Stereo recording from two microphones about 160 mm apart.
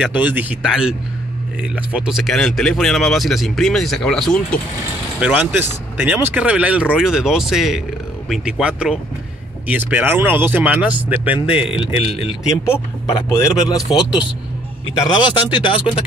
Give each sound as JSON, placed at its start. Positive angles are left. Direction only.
{"t": 0.0, "sound": "speech", "side_deg": -10}
{"t": 5.2, "sound": "speech", "side_deg": -10}
{"t": 11.3, "sound": "speech", "side_deg": 35}
{"t": 12.4, "sound": "speech", "side_deg": 20}
{"t": 15.5, "sound": "speech", "side_deg": 30}